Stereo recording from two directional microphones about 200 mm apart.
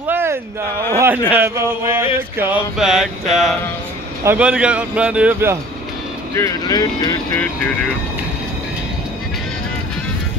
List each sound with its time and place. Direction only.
0.0 s a sound: 10° right (ahead or behind)
0.9 s a man's voice: 10° right (ahead or behind)
4.2 s speech: 10° right (ahead or behind)
6.3 s speech: 15° left (ahead or behind)
7.3 s speech: 5° left (ahead or behind)